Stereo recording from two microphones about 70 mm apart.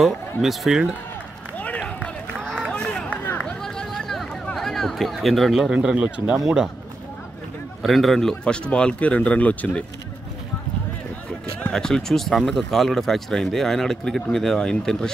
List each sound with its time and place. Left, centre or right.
0.4 s speech: centre
1.8 s run: centre
3.6 s a sound: centre
4.6 s speech: centre
6.3 s speech: centre
7.8 s speech: centre; by 9.8 s left
11.7 s speech: centre